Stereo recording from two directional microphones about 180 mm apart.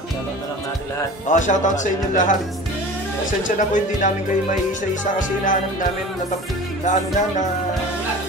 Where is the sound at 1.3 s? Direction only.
45° left (ahead or behind).